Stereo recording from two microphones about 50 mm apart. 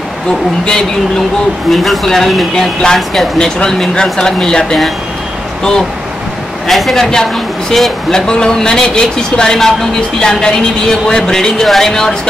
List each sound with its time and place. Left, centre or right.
1.7 s a woman's voice: centre
6.7 s a woman's voice: centre